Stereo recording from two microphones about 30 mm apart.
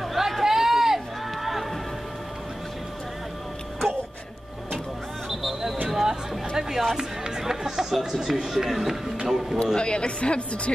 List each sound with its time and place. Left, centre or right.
0.0 s run: centre
5.3 s a sound: centre
5.9 s chatter: centre
7.0 s music: centre
8.1 s speech: centre
9.8 s a woman's voice: left